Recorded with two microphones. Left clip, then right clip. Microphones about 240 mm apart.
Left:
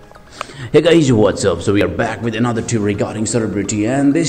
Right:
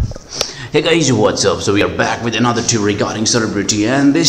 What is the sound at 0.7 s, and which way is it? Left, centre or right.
A man's voice, centre.